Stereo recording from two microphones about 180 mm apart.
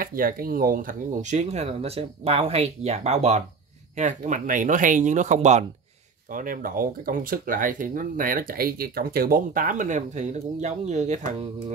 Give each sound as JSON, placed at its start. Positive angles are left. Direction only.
{"t": 0.0, "sound": "speech", "side_deg": -50}
{"t": 6.3, "sound": "speech", "side_deg": -50}